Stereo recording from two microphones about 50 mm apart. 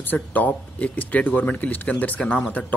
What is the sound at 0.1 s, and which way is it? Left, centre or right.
Speech, left.